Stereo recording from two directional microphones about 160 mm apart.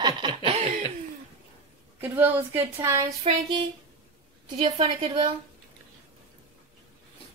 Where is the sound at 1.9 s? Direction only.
15° right (ahead or behind).